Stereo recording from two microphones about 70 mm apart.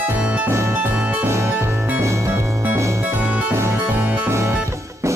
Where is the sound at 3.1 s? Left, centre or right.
Right.